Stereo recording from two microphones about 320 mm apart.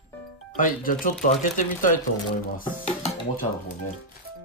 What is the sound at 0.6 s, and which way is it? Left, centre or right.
Speech, left.